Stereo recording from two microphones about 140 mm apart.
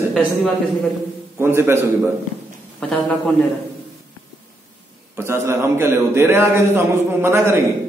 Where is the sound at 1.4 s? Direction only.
20° right (ahead or behind).